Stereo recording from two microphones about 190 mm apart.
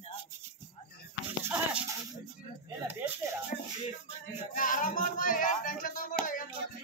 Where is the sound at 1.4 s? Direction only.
5° right (ahead or behind).